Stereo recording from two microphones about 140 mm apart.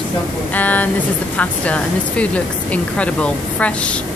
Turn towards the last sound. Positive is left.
turn(degrees=10)  # may be behind; listen again after turning